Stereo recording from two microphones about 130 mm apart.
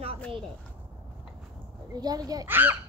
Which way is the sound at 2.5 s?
15° right (ahead or behind).